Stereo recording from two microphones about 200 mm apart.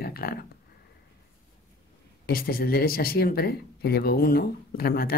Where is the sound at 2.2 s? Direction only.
45° left (ahead or behind).